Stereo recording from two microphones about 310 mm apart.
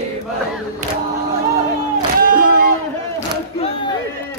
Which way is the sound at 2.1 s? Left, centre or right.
Right.